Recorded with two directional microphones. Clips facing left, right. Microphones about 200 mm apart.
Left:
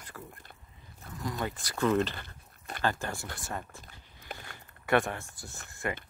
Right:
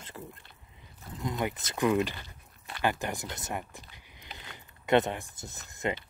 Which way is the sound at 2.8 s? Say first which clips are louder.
Right 2 dB; 15° right (ahead or behind).